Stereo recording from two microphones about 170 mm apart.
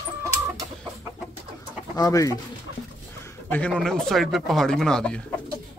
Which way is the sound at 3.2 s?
10° left (ahead or behind).